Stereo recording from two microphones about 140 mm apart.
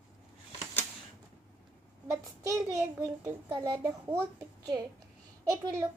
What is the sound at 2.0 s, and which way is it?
A child's voice, 20° right (ahead or behind).